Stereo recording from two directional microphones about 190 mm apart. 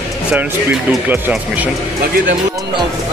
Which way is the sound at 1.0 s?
10° right (ahead or behind).